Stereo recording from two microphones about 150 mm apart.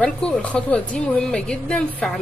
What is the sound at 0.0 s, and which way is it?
Speech, 5° left (ahead or behind).